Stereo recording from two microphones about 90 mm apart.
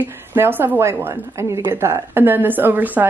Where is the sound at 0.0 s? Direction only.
25° right (ahead or behind).